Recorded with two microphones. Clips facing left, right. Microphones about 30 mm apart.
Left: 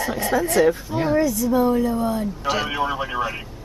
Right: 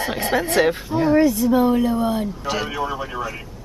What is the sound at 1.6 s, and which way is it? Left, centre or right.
Speech, right.